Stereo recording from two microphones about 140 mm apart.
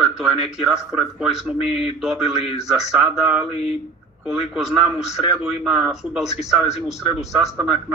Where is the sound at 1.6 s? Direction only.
45° left (ahead or behind).